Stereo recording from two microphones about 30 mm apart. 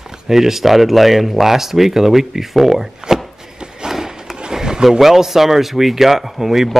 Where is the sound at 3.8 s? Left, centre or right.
Centre.